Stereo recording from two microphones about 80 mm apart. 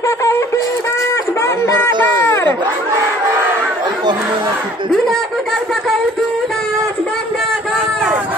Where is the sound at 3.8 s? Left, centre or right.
Right.